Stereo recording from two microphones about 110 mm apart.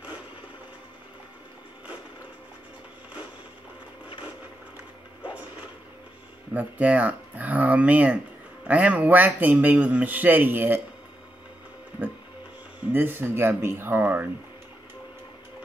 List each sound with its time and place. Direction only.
6.5 s a man's voice: 10° right (ahead or behind)
12.9 s speech: 20° right (ahead or behind)